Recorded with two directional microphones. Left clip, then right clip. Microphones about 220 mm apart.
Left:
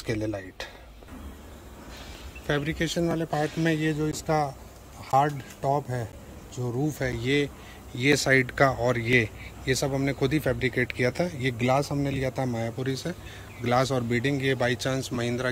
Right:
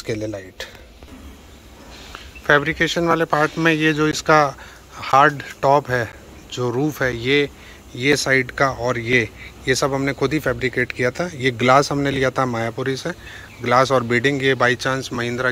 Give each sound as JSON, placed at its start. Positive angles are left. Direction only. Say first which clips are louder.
{"t": 0.0, "sound": "speech", "louder": "right 5 dB", "side_deg": 5}
{"t": 2.4, "sound": "speech", "louder": "right 12 dB", "side_deg": 5}
{"t": 4.3, "sound": "speech", "louder": "right 12 dB", "side_deg": -40}
{"t": 5.0, "sound": "a sound", "louder": "right 9 dB", "side_deg": -45}
{"t": 5.6, "sound": "speech", "louder": "right 11 dB", "side_deg": -40}
{"t": 6.8, "sound": "speech", "louder": "right 6 dB", "side_deg": 0}